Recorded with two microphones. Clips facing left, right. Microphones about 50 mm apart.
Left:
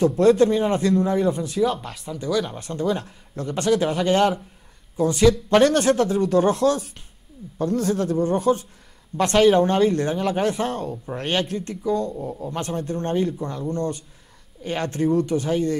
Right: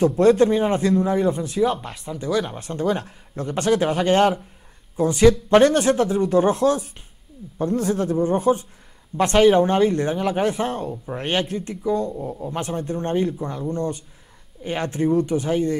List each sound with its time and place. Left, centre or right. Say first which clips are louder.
0.2 s a man's voice: right 1 dB; centre
2.8 s speech: right 1 dB; right
5.6 s a man's voice: right 1 dB; centre